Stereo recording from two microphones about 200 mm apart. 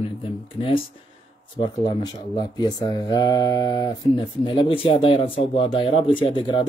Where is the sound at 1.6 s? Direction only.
20° left (ahead or behind).